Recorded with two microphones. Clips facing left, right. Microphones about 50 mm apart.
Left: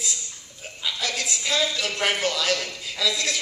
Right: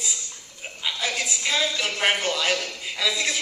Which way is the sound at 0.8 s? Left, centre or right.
Centre.